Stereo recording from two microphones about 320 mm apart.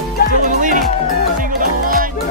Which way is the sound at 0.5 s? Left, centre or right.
Right.